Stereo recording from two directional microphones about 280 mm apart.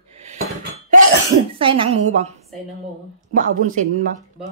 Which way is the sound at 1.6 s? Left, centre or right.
Centre.